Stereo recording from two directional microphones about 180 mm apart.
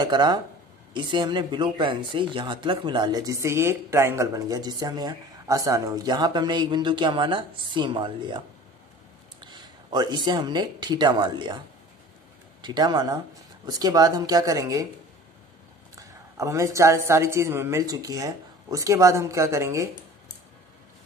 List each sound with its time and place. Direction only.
0.0 s speech: 25° right (ahead or behind)
9.5 s speech: 25° right (ahead or behind)
12.6 s speech: 25° right (ahead or behind)
16.0 s a woman's voice: 15° right (ahead or behind)